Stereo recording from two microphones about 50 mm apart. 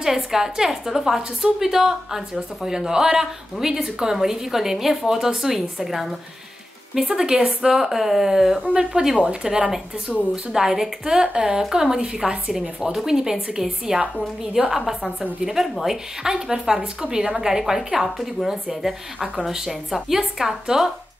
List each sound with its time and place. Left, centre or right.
0.0 s a woman's voice: centre
8.6 s a woman's voice: right
9.0 s a woman's voice: centre